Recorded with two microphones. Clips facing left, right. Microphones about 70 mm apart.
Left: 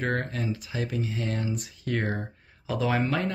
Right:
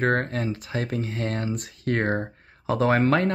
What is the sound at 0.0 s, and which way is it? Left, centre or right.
Speech, right.